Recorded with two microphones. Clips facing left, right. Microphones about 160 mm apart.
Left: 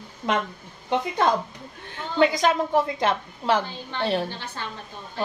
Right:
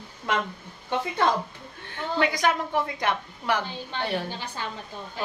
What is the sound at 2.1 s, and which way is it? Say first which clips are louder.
A woman's voice: left 4 dB; 25° left (ahead or behind).